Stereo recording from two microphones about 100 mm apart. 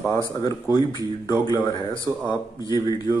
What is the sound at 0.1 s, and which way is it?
Speech, 40° left (ahead or behind).